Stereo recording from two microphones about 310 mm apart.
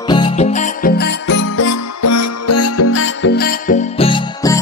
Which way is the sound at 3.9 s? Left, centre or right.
Centre.